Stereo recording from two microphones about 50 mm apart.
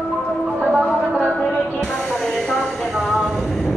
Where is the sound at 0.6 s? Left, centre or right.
Right.